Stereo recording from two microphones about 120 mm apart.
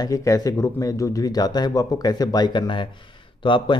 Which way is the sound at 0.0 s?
30° left (ahead or behind).